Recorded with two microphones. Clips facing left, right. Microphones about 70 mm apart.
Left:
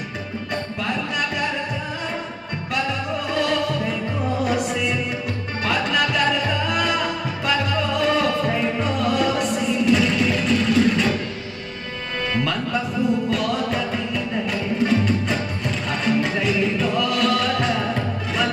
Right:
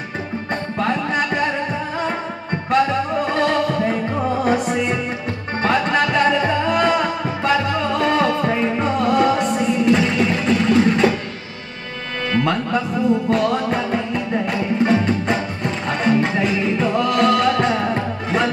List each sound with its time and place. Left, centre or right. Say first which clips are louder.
0.7 s music: right 7 dB; right
2.7 s music: right 7 dB; right
13.3 s music: right 4 dB; right